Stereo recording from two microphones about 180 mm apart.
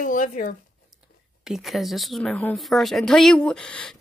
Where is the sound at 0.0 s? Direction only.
45° left (ahead or behind).